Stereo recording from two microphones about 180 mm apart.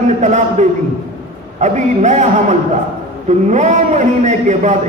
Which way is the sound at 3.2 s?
40° right (ahead or behind).